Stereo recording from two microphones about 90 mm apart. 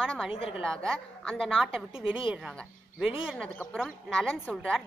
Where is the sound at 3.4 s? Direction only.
15° left (ahead or behind).